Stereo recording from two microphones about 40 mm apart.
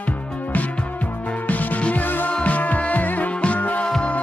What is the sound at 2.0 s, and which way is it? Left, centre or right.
Music, left.